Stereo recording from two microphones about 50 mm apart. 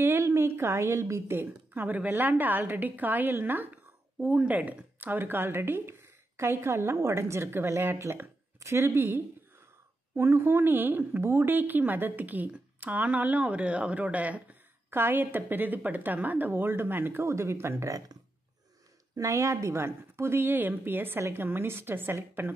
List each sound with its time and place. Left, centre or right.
0.2 s a woman's voice: right
1.7 s a woman's voice: right
8.5 s speech: right
8.8 s a woman's voice: right
13.4 s speech: right
14.9 s a woman's voice: right
19.3 s a woman's voice: right